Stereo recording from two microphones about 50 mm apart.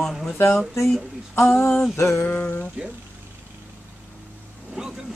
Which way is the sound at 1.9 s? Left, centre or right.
Left.